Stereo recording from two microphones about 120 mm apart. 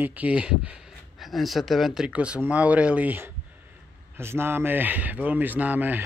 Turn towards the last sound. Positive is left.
turn(degrees=-15)  # may be behind; listen again after turning